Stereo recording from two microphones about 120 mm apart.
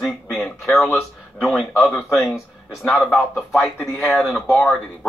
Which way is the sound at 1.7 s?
15° left (ahead or behind).